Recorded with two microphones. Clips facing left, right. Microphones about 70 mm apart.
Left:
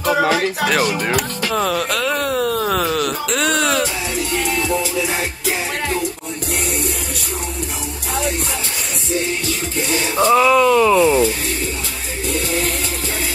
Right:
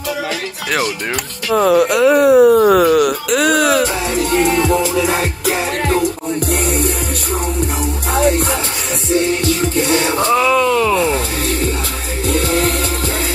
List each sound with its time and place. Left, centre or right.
0.1 s music: left
1.5 s speech: centre
4.3 s music: right
8.1 s music: right
9.6 s music: right
10.3 s a sound: centre